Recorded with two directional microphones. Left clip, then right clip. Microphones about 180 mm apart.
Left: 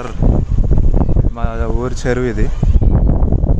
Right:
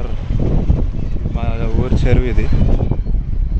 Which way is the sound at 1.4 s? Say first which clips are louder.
Even; 25° left (ahead or behind).